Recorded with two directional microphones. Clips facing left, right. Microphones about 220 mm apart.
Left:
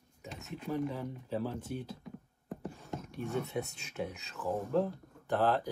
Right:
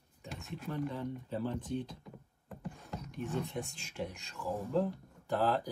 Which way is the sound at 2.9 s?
5° left (ahead or behind).